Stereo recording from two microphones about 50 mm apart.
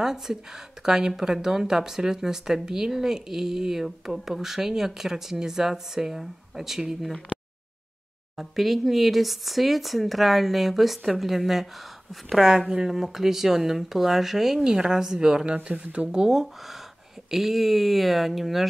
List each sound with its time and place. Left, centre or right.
0.0 s speech: centre
8.4 s speech: centre
12.4 s speech: centre
16.3 s speech: centre